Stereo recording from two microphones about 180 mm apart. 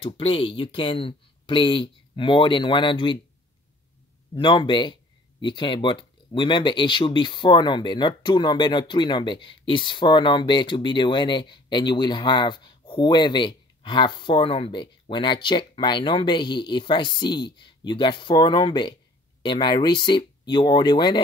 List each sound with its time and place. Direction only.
0.0 s speech: 30° left (ahead or behind)
4.4 s speech: 25° left (ahead or behind)